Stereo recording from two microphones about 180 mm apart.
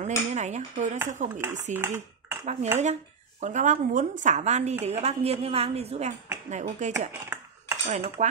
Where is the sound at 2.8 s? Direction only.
40° right (ahead or behind).